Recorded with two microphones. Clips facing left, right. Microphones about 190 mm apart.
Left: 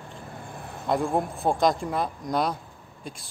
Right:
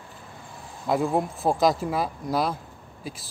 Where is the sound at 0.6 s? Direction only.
60° left (ahead or behind).